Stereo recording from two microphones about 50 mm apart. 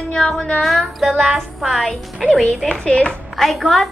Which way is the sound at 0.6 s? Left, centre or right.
Centre.